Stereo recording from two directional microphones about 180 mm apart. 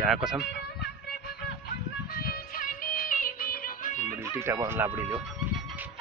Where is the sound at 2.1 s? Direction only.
55° left (ahead or behind).